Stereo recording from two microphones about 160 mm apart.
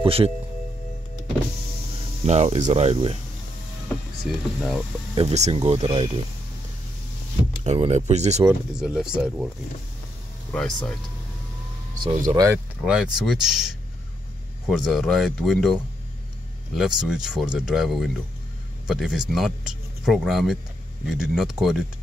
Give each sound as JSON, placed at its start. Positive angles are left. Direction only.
{"t": 0.0, "sound": "speech", "side_deg": -35}
{"t": 2.2, "sound": "speech", "side_deg": -45}
{"t": 4.3, "sound": "speech", "side_deg": 0}
{"t": 5.1, "sound": "speech", "side_deg": -40}
{"t": 7.6, "sound": "speech", "side_deg": -40}
{"t": 8.5, "sound": "speech", "side_deg": -5}
{"t": 10.5, "sound": "speech", "side_deg": 5}
{"t": 12.3, "sound": "speech", "side_deg": -40}
{"t": 12.8, "sound": "speech", "side_deg": -5}